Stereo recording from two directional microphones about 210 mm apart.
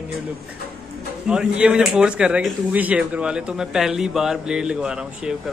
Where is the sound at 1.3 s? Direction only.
5° right (ahead or behind).